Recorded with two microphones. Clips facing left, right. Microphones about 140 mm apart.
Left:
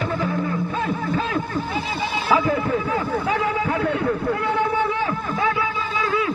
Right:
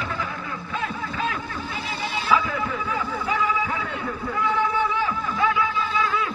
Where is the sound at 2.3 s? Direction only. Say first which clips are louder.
Left 4 dB; 50° left (ahead or behind).